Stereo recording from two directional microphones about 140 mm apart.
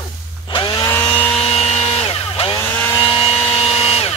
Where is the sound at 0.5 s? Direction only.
40° left (ahead or behind).